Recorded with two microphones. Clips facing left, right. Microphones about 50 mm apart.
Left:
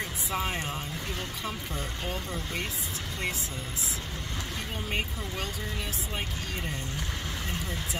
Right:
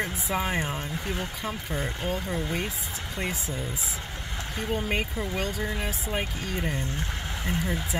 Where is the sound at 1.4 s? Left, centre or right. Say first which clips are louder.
Right 5 dB; right.